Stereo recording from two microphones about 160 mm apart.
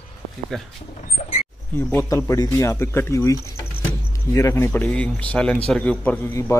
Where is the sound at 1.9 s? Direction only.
15° left (ahead or behind).